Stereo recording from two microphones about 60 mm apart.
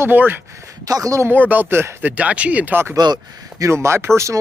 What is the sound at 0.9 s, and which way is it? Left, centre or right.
Speech, right.